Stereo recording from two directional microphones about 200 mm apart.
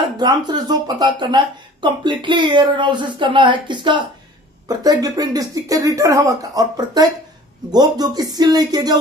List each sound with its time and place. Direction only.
0.2 s speech: 20° right (ahead or behind)